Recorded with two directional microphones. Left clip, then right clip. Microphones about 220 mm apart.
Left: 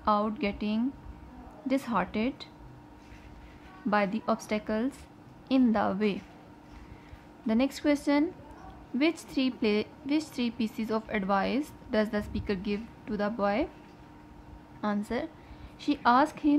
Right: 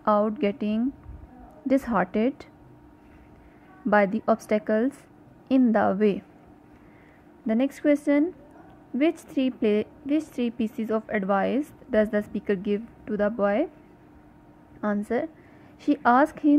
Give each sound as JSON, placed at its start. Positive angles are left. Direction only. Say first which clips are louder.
{"t": 0.0, "sound": "a woman's voice", "louder": "right 5 dB", "side_deg": -20}
{"t": 1.9, "sound": "a woman's voice", "louder": "right 6 dB", "side_deg": -20}
{"t": 3.9, "sound": "a woman's voice", "louder": "right 7 dB", "side_deg": -20}
{"t": 7.4, "sound": "a woman's voice", "louder": "right 4 dB", "side_deg": -15}
{"t": 14.8, "sound": "a woman's voice", "louder": "right 5 dB", "side_deg": -15}